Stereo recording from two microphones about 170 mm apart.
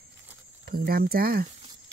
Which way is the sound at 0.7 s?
60° right (ahead or behind).